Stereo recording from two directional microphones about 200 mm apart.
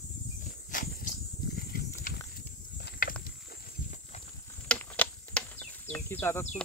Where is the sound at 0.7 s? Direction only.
40° left (ahead or behind).